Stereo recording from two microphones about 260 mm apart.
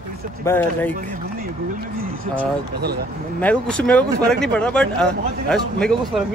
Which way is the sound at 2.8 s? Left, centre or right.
Right.